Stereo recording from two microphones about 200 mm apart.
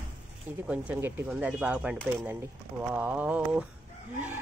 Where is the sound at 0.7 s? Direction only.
10° right (ahead or behind).